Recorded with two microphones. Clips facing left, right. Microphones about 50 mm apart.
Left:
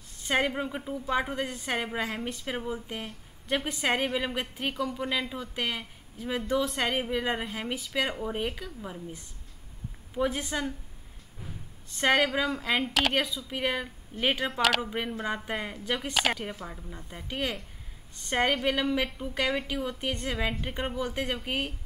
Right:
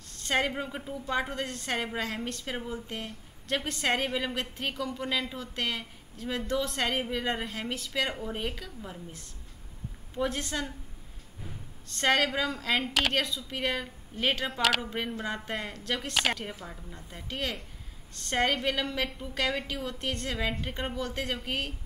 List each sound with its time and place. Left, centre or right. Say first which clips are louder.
0.1 s a sound: left 1 dB; centre
0.5 s a woman's voice: left 2 dB; centre
11.9 s a woman's voice: left 2 dB; centre